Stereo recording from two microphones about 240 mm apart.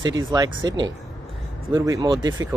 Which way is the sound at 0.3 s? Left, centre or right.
Centre.